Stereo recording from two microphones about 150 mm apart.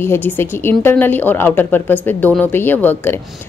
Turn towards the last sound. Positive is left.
turn(degrees=15)  # may be behind; listen again after turning